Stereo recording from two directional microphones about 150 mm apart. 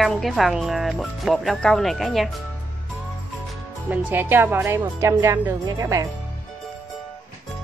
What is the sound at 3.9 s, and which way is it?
A woman's voice, 15° right (ahead or behind).